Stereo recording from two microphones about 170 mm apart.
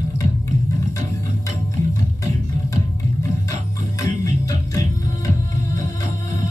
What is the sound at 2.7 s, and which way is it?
Music, 20° left (ahead or behind).